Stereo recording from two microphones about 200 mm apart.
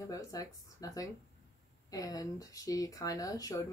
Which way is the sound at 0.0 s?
15° left (ahead or behind).